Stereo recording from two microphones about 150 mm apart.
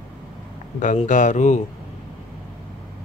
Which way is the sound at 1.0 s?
60° left (ahead or behind).